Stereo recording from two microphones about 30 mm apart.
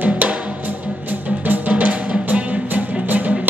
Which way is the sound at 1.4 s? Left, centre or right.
Right.